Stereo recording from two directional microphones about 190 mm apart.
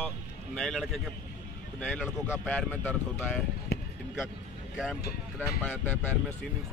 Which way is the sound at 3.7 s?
55° left (ahead or behind).